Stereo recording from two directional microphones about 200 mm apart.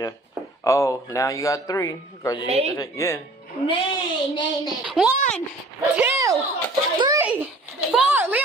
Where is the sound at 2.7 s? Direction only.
15° left (ahead or behind).